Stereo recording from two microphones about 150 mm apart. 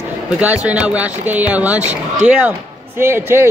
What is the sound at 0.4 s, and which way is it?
Speech, 10° right (ahead or behind).